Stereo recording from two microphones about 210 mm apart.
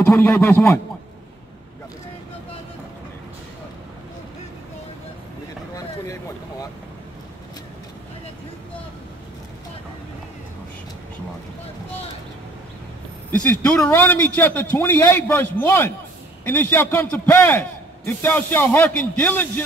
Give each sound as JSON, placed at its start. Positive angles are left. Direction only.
{"t": 0.0, "sound": "a man's voice", "side_deg": 10}
{"t": 13.3, "sound": "a man's voice", "side_deg": 5}